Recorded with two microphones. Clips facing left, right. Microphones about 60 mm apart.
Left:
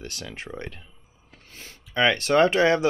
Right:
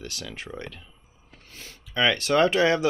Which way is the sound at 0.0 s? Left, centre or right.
Left.